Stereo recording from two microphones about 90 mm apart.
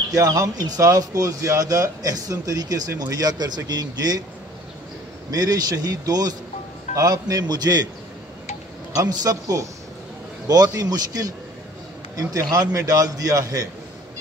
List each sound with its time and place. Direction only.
0.1 s a man's voice: 40° right (ahead or behind)
5.3 s speech: 45° right (ahead or behind)
8.9 s a man's voice: 40° right (ahead or behind)